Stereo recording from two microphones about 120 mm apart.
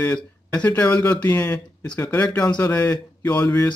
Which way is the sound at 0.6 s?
15° left (ahead or behind).